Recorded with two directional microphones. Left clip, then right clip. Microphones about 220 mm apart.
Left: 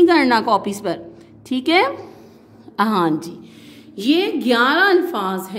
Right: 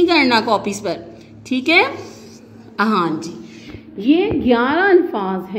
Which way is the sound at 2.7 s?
40° left (ahead or behind).